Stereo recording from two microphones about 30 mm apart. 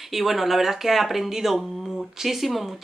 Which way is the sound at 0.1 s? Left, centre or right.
Centre.